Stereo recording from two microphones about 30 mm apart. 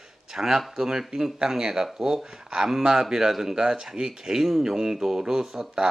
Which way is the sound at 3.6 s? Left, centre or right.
Right.